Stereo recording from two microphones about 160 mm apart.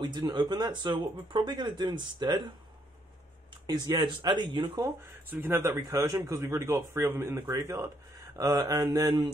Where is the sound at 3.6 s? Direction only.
25° right (ahead or behind).